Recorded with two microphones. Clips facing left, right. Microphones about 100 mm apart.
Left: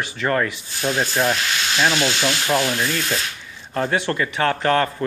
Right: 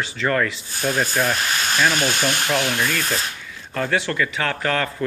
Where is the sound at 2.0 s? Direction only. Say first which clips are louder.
Left 1 dB; 45° right (ahead or behind).